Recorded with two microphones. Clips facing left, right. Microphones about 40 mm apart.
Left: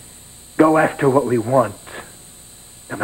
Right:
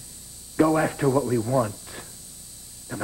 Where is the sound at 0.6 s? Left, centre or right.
Left.